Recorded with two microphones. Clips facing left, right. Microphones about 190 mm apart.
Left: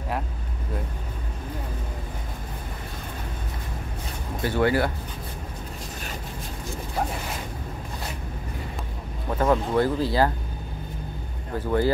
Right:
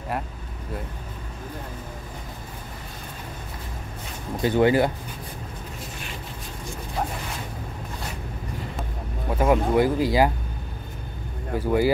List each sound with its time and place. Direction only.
4.4 s speech: 20° right (ahead or behind)
9.3 s speech: 10° right (ahead or behind)
11.5 s speech: 10° right (ahead or behind)